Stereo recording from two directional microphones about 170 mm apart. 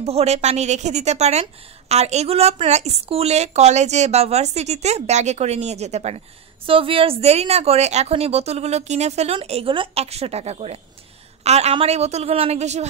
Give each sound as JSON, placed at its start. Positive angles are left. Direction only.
{"t": 0.0, "sound": "a woman's voice", "side_deg": -40}